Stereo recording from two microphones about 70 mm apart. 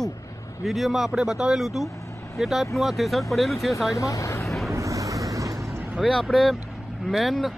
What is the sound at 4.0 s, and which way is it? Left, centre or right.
Speech, left.